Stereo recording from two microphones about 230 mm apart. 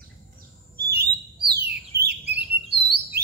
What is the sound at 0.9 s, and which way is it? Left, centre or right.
Bird, right.